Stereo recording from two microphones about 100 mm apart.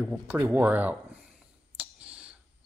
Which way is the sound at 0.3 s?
20° right (ahead or behind).